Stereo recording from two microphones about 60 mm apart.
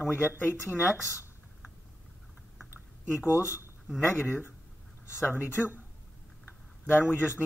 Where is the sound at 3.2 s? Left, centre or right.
Right.